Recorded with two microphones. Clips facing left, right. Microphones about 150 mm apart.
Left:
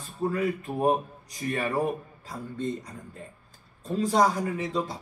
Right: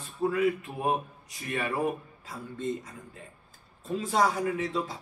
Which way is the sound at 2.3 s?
5° right (ahead or behind).